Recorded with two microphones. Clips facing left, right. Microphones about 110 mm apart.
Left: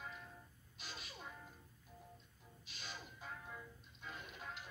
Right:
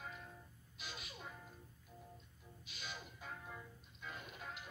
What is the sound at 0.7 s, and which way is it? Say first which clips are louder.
Music: right 1 dB; 35° left (ahead or behind).